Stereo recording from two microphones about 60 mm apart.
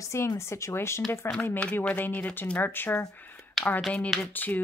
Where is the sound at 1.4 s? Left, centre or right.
Left.